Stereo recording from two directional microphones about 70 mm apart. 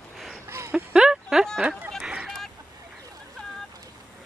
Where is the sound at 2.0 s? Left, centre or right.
Centre.